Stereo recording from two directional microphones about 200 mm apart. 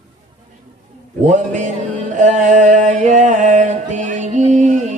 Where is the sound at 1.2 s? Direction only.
35° right (ahead or behind).